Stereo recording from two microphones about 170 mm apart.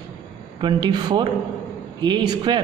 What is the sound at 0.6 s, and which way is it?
A woman's voice, 25° right (ahead or behind).